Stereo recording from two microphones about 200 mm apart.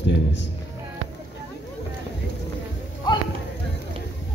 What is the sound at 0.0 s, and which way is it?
Music, 60° left (ahead or behind).